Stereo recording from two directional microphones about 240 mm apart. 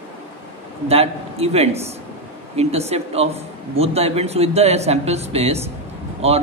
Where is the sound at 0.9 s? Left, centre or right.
Right.